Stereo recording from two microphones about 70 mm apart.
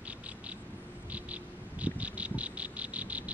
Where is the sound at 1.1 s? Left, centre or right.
Centre.